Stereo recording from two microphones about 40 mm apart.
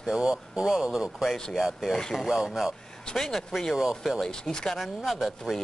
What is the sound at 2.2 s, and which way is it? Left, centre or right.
Speech, centre.